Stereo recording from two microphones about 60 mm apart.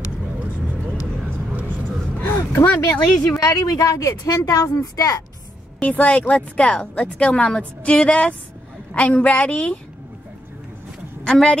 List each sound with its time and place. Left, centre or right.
2.2 s a sound: left
3.2 s a woman's voice: left
5.8 s speech: left
11.2 s a woman's voice: centre